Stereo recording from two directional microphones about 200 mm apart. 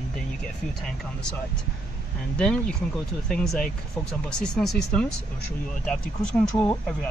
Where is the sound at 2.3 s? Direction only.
5° left (ahead or behind).